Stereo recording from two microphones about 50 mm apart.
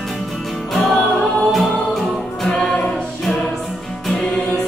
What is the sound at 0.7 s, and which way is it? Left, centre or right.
Music, centre.